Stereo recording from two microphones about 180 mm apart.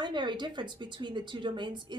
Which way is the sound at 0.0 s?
25° right (ahead or behind).